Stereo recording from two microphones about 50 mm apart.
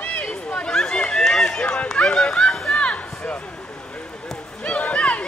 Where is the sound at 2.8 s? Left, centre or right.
Left.